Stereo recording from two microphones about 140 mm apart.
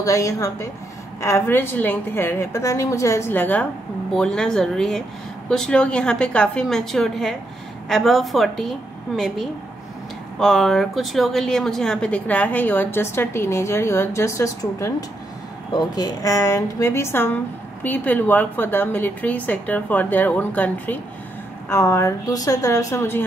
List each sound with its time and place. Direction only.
0.0 s a woman's voice: 25° left (ahead or behind)